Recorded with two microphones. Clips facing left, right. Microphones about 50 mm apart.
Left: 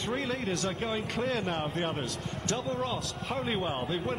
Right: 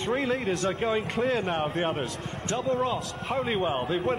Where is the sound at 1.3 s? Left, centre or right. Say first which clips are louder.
Right 4 dB; right.